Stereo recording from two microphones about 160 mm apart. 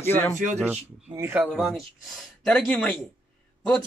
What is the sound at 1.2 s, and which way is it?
Speech, 15° right (ahead or behind).